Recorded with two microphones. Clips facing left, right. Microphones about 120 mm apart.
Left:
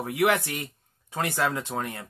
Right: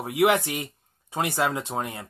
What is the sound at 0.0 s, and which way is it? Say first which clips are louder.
Speech: right 2 dB; 20° right (ahead or behind).